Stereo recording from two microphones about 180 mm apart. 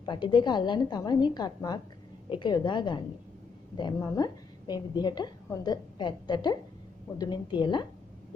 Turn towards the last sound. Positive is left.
turn(degrees=25)  # may be behind; listen again after turning